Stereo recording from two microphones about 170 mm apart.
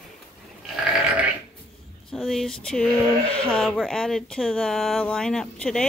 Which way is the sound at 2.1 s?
Centre (ahead or behind).